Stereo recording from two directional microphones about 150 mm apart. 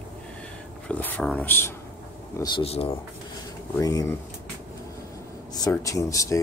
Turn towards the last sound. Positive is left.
turn(degrees=20)  # may be behind; listen again after turning